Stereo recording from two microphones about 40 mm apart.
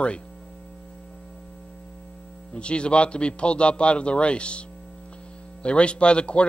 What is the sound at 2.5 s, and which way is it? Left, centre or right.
Speech, left.